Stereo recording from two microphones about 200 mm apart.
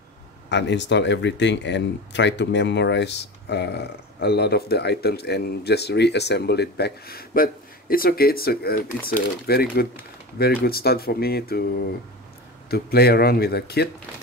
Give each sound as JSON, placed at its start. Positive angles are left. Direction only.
{"t": 0.5, "sound": "speech", "side_deg": 60}
{"t": 12.6, "sound": "speech", "side_deg": 50}